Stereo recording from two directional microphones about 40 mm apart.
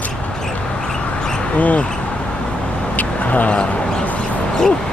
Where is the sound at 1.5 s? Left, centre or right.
Left.